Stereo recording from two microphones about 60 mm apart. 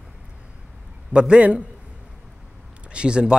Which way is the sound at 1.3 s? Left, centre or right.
Right.